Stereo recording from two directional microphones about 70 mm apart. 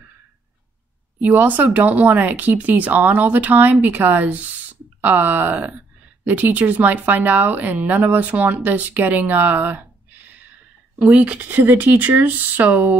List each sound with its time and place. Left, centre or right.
1.2 s speech: right
11.0 s speech: centre